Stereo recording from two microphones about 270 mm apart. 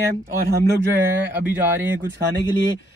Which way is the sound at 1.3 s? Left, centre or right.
Centre.